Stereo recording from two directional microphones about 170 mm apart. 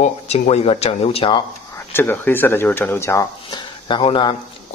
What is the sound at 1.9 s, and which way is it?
Speech, 15° left (ahead or behind).